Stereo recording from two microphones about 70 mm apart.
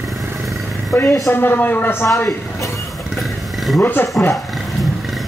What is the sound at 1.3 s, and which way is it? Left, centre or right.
Speech, left.